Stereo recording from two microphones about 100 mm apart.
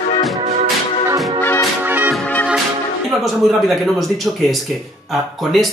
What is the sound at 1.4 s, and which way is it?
Music, 20° left (ahead or behind).